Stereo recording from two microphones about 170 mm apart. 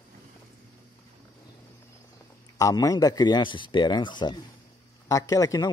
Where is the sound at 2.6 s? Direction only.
20° left (ahead or behind).